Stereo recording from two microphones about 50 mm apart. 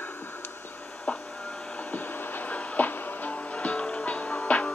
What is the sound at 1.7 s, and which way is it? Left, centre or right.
Music, left.